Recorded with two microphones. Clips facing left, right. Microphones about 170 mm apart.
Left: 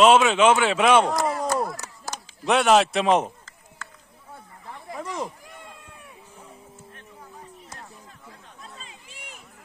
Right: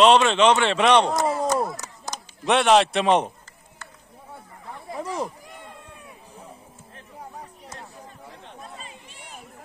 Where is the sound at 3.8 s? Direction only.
90° left.